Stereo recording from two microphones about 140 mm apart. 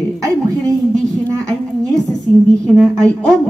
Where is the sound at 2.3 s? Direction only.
10° left (ahead or behind).